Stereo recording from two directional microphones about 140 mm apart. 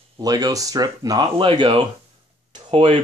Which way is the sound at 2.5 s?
40° right (ahead or behind).